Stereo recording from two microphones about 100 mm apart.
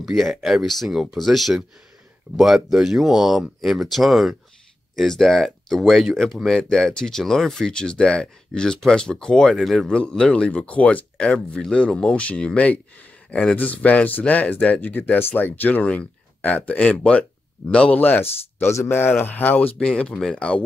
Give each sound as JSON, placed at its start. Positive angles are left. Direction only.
{"t": 0.0, "sound": "speech", "side_deg": 0}